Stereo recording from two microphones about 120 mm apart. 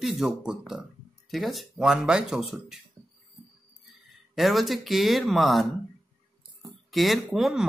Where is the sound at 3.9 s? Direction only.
Centre (ahead or behind).